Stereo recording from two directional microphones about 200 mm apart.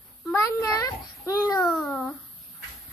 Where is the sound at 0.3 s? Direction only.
15° left (ahead or behind).